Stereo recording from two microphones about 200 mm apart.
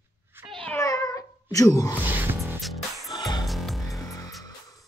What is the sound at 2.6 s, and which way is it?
Music, centre (ahead or behind).